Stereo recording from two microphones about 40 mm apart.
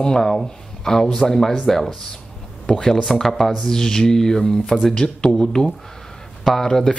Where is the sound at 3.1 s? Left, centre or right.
Centre.